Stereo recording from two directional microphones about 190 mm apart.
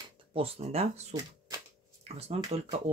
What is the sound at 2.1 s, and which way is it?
Speech, 30° right (ahead or behind).